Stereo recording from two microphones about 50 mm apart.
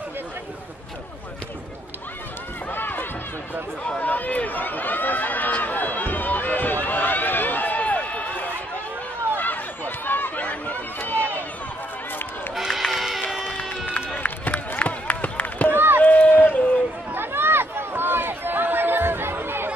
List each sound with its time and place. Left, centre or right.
2.7 s run: left
9.4 s chatter: left
10.4 s chatter: left
12.5 s run: centre
13.4 s run: left
15.7 s chop: right
16.0 s a sound: left
17.1 s a sound: right